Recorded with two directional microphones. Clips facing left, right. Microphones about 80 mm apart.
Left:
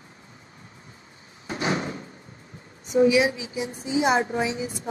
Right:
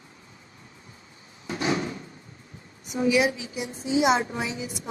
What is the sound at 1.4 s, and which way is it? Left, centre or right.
Door, left.